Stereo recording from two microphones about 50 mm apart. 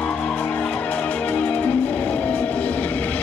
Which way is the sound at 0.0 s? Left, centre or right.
Centre.